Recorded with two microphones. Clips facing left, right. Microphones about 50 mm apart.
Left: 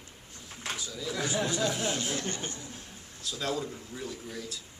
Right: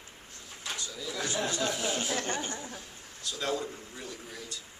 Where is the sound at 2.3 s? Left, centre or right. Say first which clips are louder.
Right 3 dB; right.